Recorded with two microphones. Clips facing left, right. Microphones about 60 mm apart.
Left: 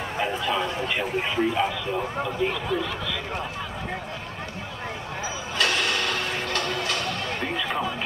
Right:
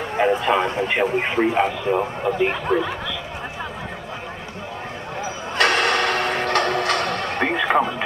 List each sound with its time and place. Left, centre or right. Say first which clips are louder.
0.4 s speech: right 6 dB; right
2.5 s speech: right 6 dB; right
5.6 s a sound: right 7 dB; right